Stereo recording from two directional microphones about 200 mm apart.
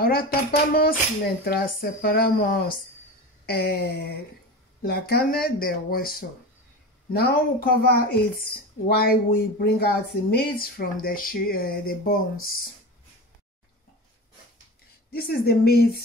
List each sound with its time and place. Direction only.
0.0 s speech: 50° left (ahead or behind)
15.1 s speech: 50° left (ahead or behind)